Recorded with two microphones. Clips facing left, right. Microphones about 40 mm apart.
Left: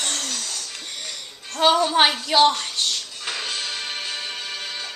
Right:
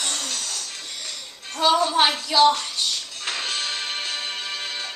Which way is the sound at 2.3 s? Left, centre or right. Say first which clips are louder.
Even; left.